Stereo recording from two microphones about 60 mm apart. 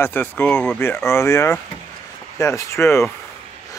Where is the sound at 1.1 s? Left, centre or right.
Left.